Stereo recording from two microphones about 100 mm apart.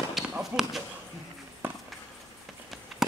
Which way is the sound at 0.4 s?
5° right (ahead or behind).